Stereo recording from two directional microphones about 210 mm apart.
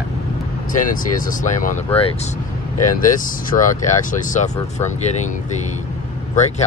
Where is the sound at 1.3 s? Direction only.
35° left (ahead or behind).